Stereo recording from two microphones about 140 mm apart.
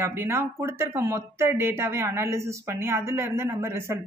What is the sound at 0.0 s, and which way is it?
Speech, 15° right (ahead or behind).